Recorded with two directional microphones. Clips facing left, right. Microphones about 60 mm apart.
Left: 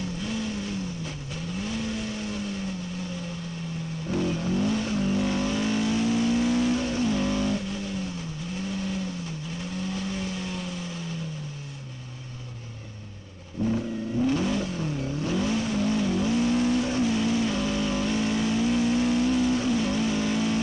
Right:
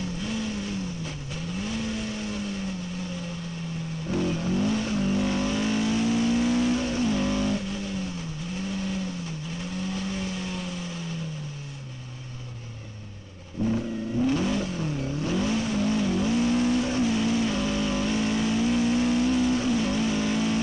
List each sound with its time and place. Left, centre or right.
0.0 s vehicle: right
4.1 s vehicle: right
13.7 s vehicle: right